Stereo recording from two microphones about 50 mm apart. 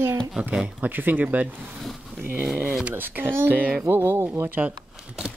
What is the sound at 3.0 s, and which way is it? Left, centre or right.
Speech, right.